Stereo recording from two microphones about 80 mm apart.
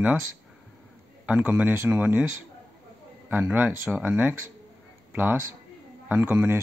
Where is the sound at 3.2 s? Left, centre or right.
Right.